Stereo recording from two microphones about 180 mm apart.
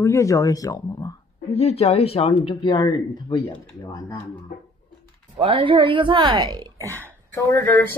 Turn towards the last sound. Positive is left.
turn(degrees=10)  # may be behind; listen again after turning